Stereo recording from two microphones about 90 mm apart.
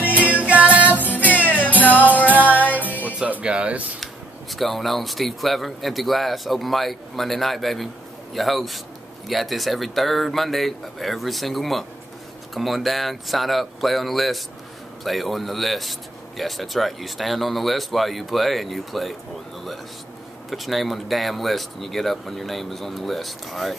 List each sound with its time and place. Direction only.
0.4 s music: 15° right (ahead or behind)
1.0 s music: 20° left (ahead or behind)
3.1 s music: 15° right (ahead or behind)
4.0 s speech: centre (ahead or behind)
20.4 s speech: centre (ahead or behind)